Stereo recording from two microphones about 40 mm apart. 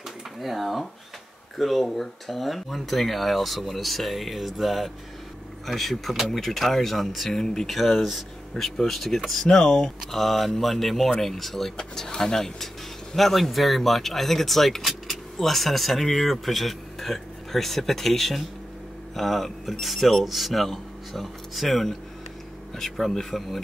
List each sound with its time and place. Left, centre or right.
0.4 s speech: centre
9.5 s speech: centre
10.1 s speech: centre
11.7 s speech: centre